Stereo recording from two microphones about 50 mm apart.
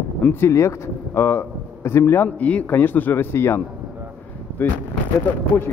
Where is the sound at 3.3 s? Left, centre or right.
Left.